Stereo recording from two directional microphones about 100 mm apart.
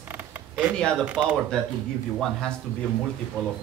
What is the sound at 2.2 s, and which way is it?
Speech, 5° left (ahead or behind).